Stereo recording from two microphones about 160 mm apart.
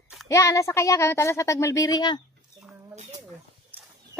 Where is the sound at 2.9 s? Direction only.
45° right (ahead or behind).